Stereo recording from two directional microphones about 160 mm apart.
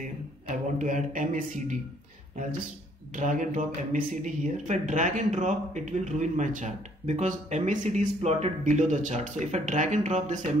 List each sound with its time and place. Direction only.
0.7 s speech: 50° right (ahead or behind)
3.2 s speech: 50° right (ahead or behind)